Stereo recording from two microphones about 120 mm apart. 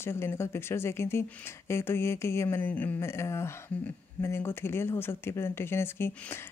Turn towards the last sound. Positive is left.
turn(degrees=20)  # may be behind; listen again after turning